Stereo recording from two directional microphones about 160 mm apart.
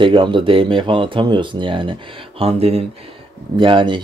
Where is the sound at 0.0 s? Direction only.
30° right (ahead or behind).